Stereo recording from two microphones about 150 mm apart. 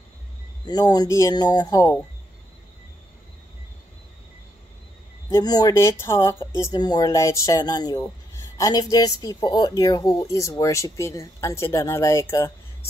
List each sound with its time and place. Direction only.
0.7 s speech: 25° left (ahead or behind)
5.3 s speech: 25° left (ahead or behind)